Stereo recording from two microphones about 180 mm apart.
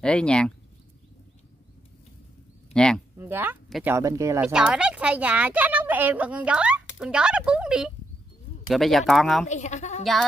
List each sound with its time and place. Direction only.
0.0 s speech: 5° left (ahead or behind)
2.7 s speech: 5° left (ahead or behind)
3.2 s speech: 10° right (ahead or behind)
4.5 s speech: 5° right (ahead or behind)
9.5 s speech: 40° left (ahead or behind)